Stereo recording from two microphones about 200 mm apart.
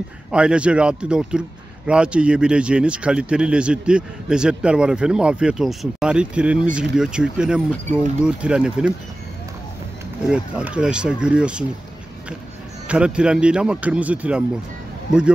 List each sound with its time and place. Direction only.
0.3 s speech: 5° right (ahead or behind)
10.2 s speech: 5° right (ahead or behind)
12.8 s speech: 5° right (ahead or behind)